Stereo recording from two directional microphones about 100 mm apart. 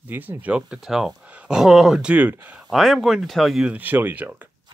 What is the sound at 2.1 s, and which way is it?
Speech, 15° right (ahead or behind).